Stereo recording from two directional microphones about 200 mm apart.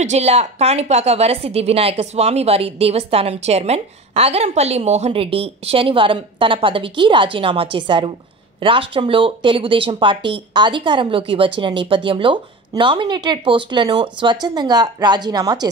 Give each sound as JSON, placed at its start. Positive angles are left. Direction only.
{"t": 0.0, "sound": "a woman's voice", "side_deg": -35}